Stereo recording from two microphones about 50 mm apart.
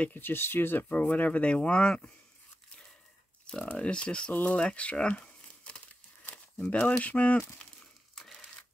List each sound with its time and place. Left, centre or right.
0.1 s speech: left
0.8 s speech: left
3.7 s speech: left
4.3 s speech: left
4.6 s speech: left